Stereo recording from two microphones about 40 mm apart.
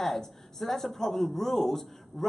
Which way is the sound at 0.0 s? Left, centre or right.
Centre.